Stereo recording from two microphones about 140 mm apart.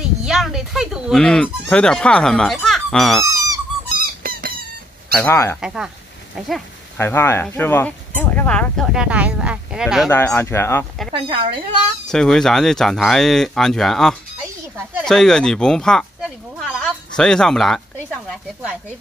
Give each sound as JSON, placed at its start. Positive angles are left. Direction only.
{"t": 0.0, "sound": "a sound", "side_deg": -5}
{"t": 1.2, "sound": "speech", "side_deg": 5}
{"t": 3.3, "sound": "squeak", "side_deg": -25}
{"t": 4.0, "sound": "squeak", "side_deg": -90}
{"t": 5.2, "sound": "speech", "side_deg": 15}
{"t": 5.6, "sound": "speech", "side_deg": -5}
{"t": 7.0, "sound": "speech", "side_deg": 15}
{"t": 10.0, "sound": "speech", "side_deg": 15}
{"t": 11.2, "sound": "a child's voice", "side_deg": -35}
{"t": 12.1, "sound": "speech", "side_deg": 5}